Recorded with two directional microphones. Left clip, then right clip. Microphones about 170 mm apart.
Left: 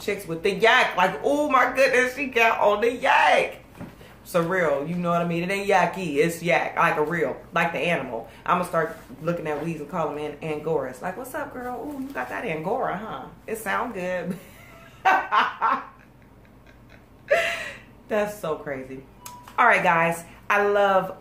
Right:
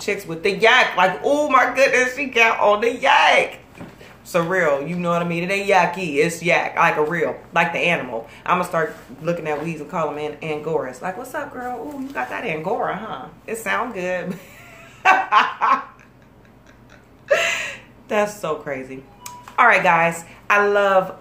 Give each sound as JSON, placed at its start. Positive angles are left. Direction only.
{"t": 0.0, "sound": "speech", "side_deg": -10}
{"t": 15.0, "sound": "fowl", "side_deg": -15}
{"t": 18.0, "sound": "speech", "side_deg": -20}
{"t": 19.5, "sound": "a woman's voice", "side_deg": -5}